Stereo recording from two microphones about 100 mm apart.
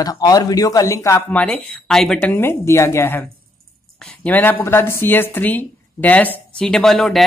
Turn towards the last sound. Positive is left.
turn(degrees=5)  # may be behind; listen again after turning